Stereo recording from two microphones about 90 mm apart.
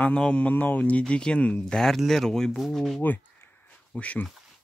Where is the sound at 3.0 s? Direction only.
20° left (ahead or behind).